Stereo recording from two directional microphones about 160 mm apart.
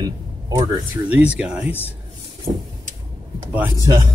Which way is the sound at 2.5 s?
40° right (ahead or behind).